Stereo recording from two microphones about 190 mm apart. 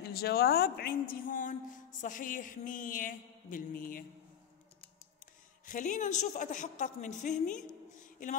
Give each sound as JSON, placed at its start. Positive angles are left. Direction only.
{"t": 0.0, "sound": "a woman's voice", "side_deg": 55}
{"t": 5.2, "sound": "speech", "side_deg": 40}